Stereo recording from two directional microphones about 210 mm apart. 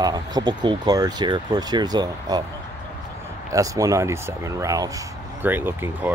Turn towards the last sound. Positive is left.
turn(degrees=-10)  # may be behind; listen again after turning